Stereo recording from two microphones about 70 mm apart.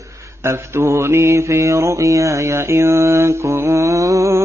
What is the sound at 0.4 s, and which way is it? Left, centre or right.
Mantra, right.